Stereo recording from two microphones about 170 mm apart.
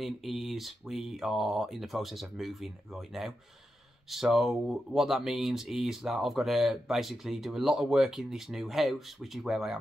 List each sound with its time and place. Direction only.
0.0 s speech: centre (ahead or behind)